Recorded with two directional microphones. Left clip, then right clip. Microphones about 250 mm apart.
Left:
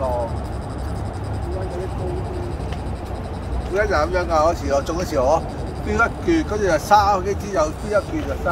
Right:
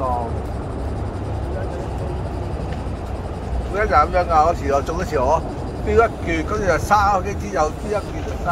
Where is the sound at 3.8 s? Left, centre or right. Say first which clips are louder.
Right 3 dB; centre.